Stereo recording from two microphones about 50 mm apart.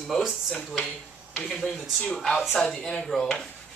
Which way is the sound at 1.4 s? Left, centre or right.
Centre.